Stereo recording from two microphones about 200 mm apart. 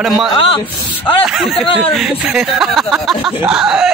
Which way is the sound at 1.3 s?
Centre (ahead or behind).